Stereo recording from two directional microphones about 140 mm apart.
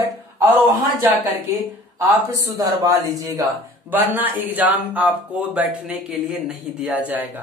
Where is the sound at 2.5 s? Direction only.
25° right (ahead or behind).